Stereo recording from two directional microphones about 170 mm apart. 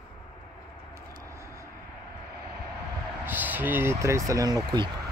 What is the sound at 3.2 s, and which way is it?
Speech, 10° right (ahead or behind).